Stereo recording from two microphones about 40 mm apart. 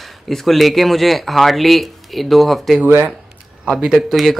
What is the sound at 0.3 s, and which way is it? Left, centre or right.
A man's voice, centre.